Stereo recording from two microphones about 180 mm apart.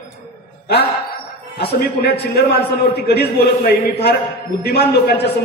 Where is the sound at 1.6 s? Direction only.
60° left (ahead or behind).